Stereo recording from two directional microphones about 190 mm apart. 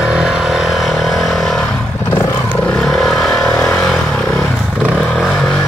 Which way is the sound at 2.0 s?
20° left (ahead or behind).